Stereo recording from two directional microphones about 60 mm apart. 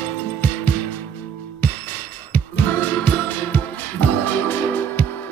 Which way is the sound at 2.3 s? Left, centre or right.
Left.